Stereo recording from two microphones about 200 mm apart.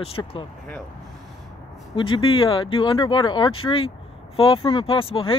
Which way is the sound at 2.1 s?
25° left (ahead or behind).